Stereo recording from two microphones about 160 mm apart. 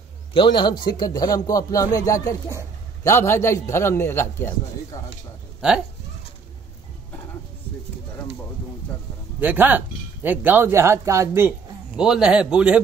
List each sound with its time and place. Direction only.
0.3 s a man's voice: 30° left (ahead or behind); by 4.6 s 15° left (ahead or behind)
5.6 s speech: 5° right (ahead or behind)
9.4 s speech: 10° right (ahead or behind)
12.0 s a man's voice: 5° right (ahead or behind)